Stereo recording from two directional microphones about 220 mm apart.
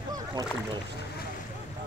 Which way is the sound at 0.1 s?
15° right (ahead or behind).